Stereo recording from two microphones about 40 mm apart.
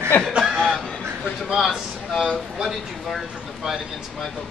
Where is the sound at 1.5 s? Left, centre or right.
Centre.